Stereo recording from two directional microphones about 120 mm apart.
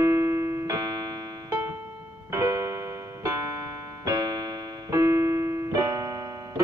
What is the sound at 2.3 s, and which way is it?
Music, 25° right (ahead or behind).